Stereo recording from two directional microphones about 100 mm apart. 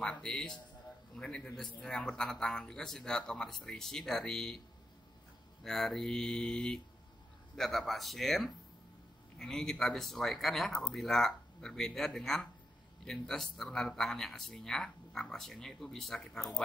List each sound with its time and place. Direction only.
0.0 s a man's voice: 10° left (ahead or behind)
5.6 s speech: 5° left (ahead or behind)